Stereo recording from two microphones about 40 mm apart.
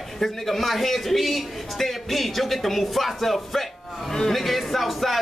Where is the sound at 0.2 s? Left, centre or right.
Centre.